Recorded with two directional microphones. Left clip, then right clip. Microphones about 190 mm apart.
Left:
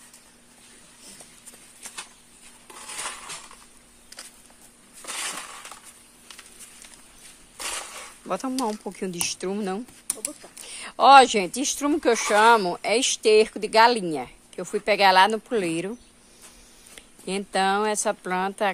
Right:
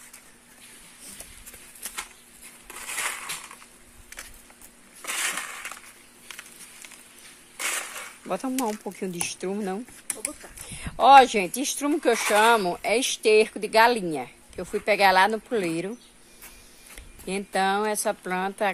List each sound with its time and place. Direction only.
2.8 s crushing: centre (ahead or behind)
5.5 s a sound: 15° left (ahead or behind)
7.8 s speech: centre (ahead or behind)